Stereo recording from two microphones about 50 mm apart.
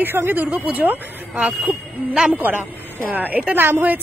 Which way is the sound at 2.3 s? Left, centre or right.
Right.